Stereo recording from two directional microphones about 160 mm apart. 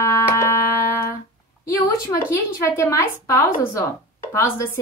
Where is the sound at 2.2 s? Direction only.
15° left (ahead or behind).